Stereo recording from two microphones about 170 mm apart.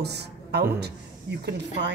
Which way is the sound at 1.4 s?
90° right.